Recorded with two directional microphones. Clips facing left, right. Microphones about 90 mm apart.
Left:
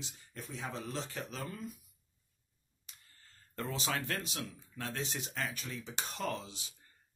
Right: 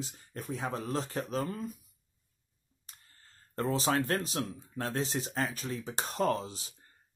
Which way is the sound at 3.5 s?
35° right (ahead or behind).